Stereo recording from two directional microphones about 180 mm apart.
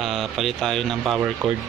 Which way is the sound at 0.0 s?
Centre (ahead or behind).